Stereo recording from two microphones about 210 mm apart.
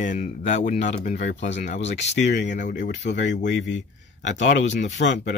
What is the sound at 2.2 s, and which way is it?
Speech, 55° left (ahead or behind).